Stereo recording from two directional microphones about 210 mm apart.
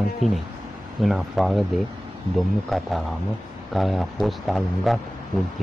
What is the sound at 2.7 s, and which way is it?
A man's voice, centre (ahead or behind).